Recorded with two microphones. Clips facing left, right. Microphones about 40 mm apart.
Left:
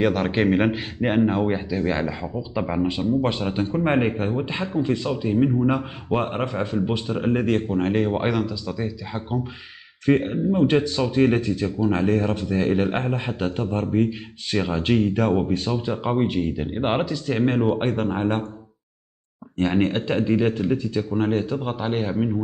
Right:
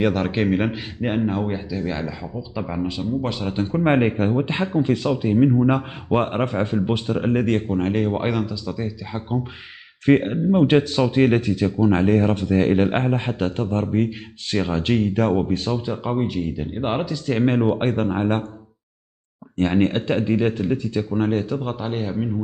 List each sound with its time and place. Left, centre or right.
0.1 s speech: centre
3.6 s speech: centre
4.5 s speech: right
7.1 s speech: centre
10.0 s speech: right
13.4 s speech: centre
17.3 s speech: centre
19.9 s speech: centre
20.2 s speech: centre
21.5 s speech: centre